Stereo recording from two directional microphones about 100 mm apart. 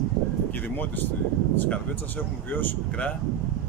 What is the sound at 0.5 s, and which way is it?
Speech, 15° left (ahead or behind).